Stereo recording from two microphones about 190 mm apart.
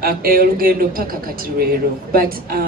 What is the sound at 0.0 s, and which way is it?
A woman's voice, 50° right (ahead or behind).